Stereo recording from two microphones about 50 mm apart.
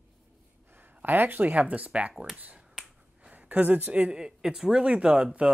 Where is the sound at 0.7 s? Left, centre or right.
Right.